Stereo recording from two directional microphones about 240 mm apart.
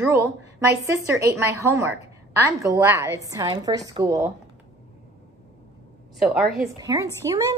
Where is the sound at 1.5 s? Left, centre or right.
Centre.